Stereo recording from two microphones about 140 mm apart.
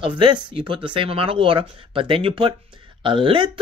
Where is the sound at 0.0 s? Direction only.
35° right (ahead or behind).